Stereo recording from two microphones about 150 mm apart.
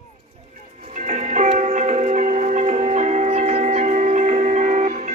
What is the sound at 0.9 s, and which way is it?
Music, 50° right (ahead or behind).